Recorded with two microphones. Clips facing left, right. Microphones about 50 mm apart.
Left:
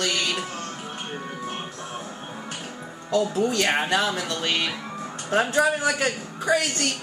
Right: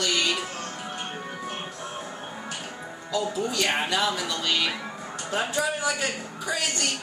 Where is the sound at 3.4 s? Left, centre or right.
Left.